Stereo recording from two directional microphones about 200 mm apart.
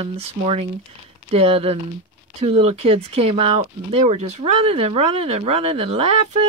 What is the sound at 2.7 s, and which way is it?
Speech, 30° right (ahead or behind).